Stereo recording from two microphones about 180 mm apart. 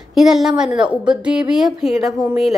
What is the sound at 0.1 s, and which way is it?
A woman's voice, centre (ahead or behind).